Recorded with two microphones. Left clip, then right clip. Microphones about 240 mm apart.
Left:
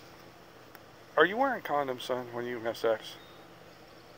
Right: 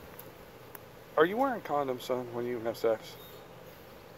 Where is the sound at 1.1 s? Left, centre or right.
Centre.